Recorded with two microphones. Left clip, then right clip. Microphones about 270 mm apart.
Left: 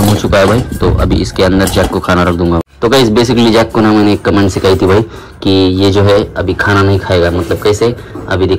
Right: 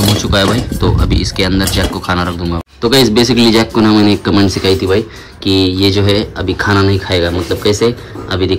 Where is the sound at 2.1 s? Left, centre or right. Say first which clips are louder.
Left 5 dB; left.